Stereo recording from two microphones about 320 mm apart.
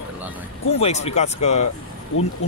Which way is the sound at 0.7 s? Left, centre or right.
Centre.